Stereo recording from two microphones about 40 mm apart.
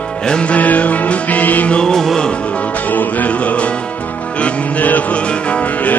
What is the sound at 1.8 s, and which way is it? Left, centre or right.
Music, centre.